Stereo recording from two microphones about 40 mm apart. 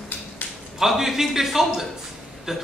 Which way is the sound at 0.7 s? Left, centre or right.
Centre.